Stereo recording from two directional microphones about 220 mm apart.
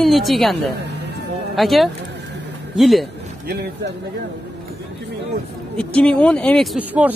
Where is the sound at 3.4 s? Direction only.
50° right (ahead or behind).